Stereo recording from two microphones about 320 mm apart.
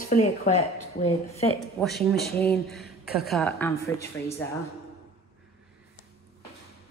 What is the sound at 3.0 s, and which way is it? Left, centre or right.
Speech, left.